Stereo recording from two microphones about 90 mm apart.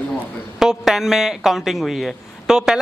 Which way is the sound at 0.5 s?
5° right (ahead or behind).